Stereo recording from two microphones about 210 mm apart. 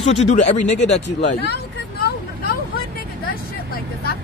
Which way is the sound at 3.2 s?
45° left (ahead or behind).